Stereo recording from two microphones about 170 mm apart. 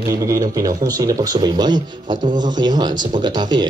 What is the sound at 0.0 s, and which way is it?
Speech, 20° right (ahead or behind).